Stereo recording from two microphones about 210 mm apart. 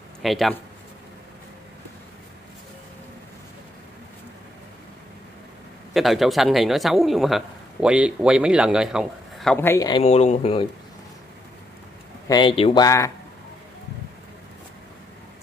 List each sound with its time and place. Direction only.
0.2 s a man's voice: centre (ahead or behind)
5.9 s a man's voice: centre (ahead or behind); by 10.0 s 20° left (ahead or behind)
10.0 s speech: 30° left (ahead or behind)
12.3 s speech: 20° left (ahead or behind)